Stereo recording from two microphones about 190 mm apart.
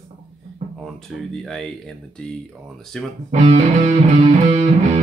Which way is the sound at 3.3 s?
40° right (ahead or behind).